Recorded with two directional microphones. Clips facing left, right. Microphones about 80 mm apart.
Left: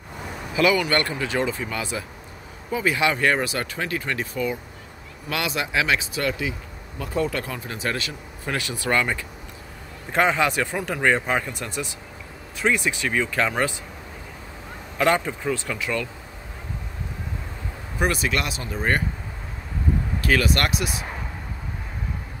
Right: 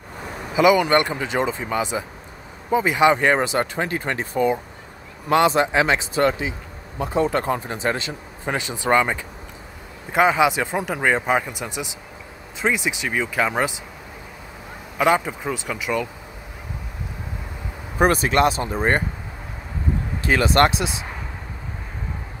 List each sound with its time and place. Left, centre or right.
0.6 s speech: centre
15.0 s speech: centre
17.9 s speech: right
20.2 s speech: right